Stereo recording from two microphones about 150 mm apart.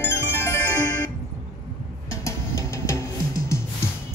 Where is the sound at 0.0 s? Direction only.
15° left (ahead or behind).